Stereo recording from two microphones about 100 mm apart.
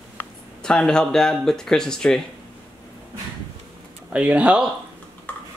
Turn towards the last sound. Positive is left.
turn(degrees=15)  # may be behind; listen again after turning